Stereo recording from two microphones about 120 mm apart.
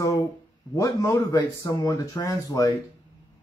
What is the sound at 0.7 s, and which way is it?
Speech, 25° left (ahead or behind).